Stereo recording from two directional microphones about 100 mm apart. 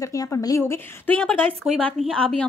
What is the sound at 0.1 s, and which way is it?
Speech, 35° left (ahead or behind).